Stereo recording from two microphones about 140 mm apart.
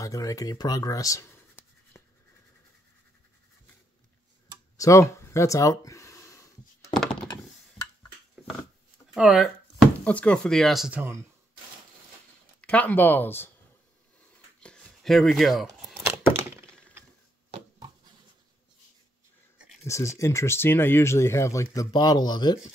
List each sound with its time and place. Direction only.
0.0 s speech: 25° left (ahead or behind)
2.0 s toothbrush: 20° left (ahead or behind)
4.7 s a sound: 20° left (ahead or behind)
9.1 s a sound: 5° right (ahead or behind)
10.0 s speech: 10° left (ahead or behind)
12.6 s speech: 10° left (ahead or behind)
14.6 s a sound: 5° left (ahead or behind)
16.3 s thunk: 20° right (ahead or behind)
19.9 s speech: 20° left (ahead or behind)